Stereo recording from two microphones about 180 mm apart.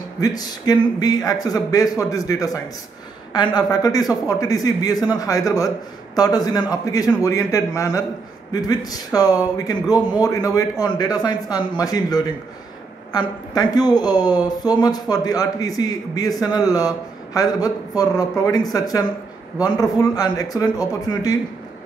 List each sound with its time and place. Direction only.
0.2 s speech: 20° left (ahead or behind)
13.5 s speech: 20° left (ahead or behind)